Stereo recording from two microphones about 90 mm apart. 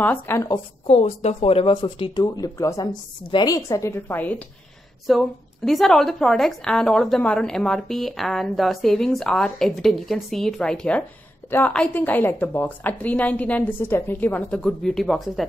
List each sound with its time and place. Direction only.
0.0 s a woman's voice: 20° left (ahead or behind)
1.4 s speech: 90° left; by 2.2 s 65° left (ahead or behind)
2.2 s speech: 45° left (ahead or behind)
2.8 s a woman's voice: 55° left (ahead or behind)
3.4 s speech: 40° left (ahead or behind)
3.9 s a woman's voice: 20° left (ahead or behind)
5.1 s a woman's voice: centre (ahead or behind); by 14.6 s 20° left (ahead or behind)
14.6 s a woman's voice: 5° left (ahead or behind)